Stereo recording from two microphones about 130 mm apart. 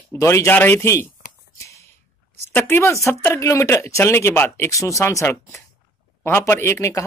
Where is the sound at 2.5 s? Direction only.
15° left (ahead or behind).